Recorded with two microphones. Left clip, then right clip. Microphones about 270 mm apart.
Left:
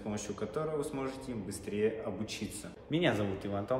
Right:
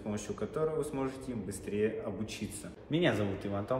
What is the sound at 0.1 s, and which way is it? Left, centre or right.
A man's voice, centre.